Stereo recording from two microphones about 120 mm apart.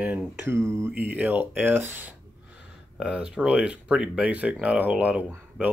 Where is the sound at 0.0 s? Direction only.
15° right (ahead or behind).